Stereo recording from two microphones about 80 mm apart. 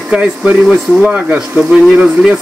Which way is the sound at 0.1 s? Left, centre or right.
Centre.